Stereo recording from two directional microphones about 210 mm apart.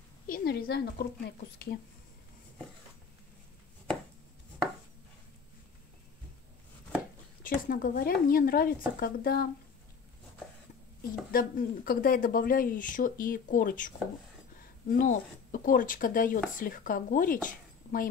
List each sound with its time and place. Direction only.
0.3 s speech: 45° left (ahead or behind)
7.4 s speech: 45° left (ahead or behind)
11.0 s speech: 45° left (ahead or behind)